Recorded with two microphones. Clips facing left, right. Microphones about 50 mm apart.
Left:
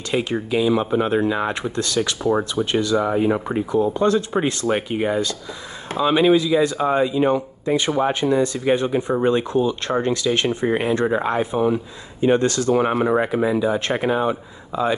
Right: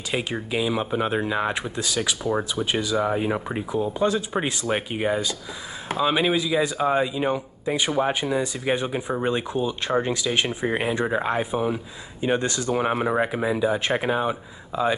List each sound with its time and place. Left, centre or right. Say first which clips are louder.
0.1 s speech: left 5 dB; centre
12.4 s speech: left 6 dB; centre
13.1 s speech: left 4 dB; centre